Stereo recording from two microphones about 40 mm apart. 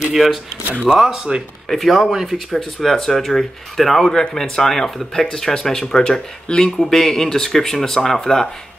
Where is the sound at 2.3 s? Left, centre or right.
Centre.